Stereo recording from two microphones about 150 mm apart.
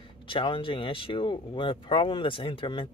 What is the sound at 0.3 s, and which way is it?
Speech, 35° left (ahead or behind).